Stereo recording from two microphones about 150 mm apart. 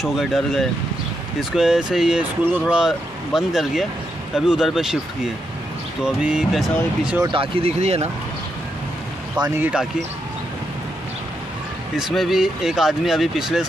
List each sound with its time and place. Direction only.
0.0 s speech: centre (ahead or behind)
7.2 s speech: 40° right (ahead or behind)
9.6 s speech: 10° right (ahead or behind)
12.0 s speech: centre (ahead or behind)